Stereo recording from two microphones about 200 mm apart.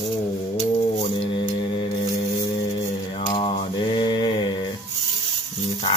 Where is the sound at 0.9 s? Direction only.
25° left (ahead or behind).